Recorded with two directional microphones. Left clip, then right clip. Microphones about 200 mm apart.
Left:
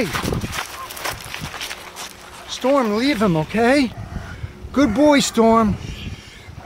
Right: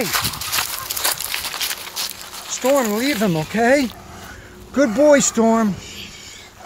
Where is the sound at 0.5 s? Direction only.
40° right (ahead or behind).